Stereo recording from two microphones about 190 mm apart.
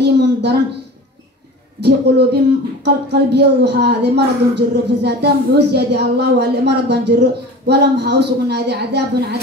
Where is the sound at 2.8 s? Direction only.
60° right (ahead or behind).